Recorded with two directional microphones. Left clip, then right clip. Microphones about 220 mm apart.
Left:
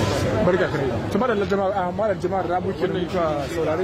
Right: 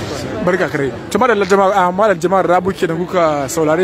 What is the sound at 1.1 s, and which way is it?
A man's voice, 30° right (ahead or behind).